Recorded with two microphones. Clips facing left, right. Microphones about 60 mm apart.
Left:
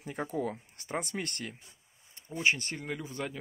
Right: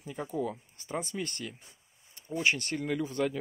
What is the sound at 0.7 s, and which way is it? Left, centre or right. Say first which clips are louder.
Speech: right 1 dB; left.